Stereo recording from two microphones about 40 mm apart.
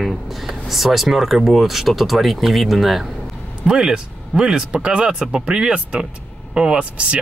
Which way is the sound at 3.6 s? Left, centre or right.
Centre.